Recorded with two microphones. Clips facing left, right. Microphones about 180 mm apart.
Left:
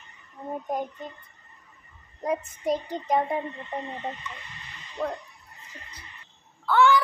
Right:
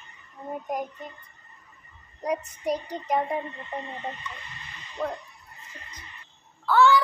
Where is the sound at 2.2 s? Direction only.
25° left (ahead or behind).